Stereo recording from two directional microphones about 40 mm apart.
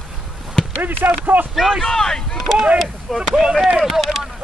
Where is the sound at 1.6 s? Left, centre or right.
Centre.